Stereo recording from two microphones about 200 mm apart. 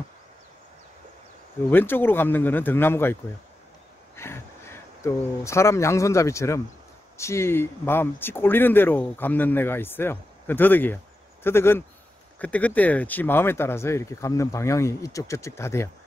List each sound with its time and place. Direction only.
1.7 s speech: 10° left (ahead or behind)
4.2 s speech: 10° left (ahead or behind)